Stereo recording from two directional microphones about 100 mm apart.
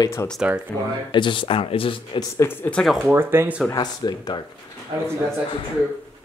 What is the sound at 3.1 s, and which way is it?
Speech, 25° right (ahead or behind).